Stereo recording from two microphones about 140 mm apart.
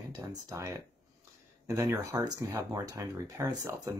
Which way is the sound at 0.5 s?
25° right (ahead or behind).